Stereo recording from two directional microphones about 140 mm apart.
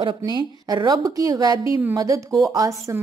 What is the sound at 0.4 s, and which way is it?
A woman's voice, 35° right (ahead or behind).